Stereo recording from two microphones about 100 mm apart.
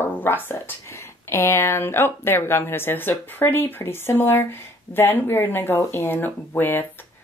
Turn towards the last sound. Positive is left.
turn(degrees=20)  # may be behind; listen again after turning